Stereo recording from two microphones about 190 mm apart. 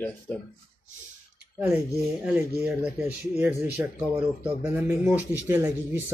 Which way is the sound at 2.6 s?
5° right (ahead or behind).